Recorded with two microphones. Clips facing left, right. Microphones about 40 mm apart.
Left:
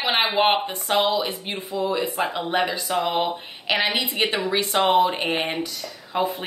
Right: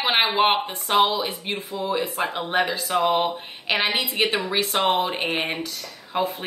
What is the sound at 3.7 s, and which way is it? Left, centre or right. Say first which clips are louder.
A woman's voice: even; right.